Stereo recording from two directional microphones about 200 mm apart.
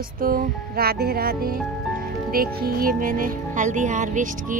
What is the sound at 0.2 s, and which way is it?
Speech, 45° right (ahead or behind).